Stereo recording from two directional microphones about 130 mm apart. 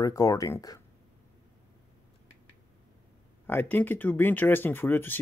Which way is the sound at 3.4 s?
15° left (ahead or behind).